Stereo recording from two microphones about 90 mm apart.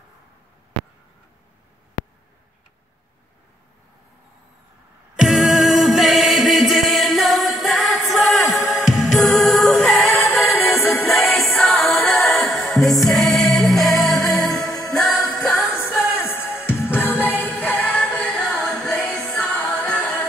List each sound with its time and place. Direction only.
5.1 s music: 5° right (ahead or behind)
14.9 s jingle bell: centre (ahead or behind)
15.3 s music: 5° left (ahead or behind)
16.0 s music: 25° left (ahead or behind)